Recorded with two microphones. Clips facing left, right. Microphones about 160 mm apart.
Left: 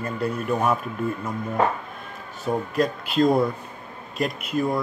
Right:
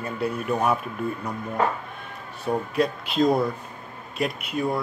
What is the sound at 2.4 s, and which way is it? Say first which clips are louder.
Speech: even; centre (ahead or behind).